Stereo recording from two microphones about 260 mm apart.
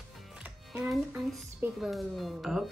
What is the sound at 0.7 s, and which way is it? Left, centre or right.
A child's voice, centre.